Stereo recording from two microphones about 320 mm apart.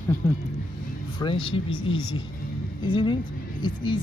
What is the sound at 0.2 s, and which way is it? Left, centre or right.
Speech, centre.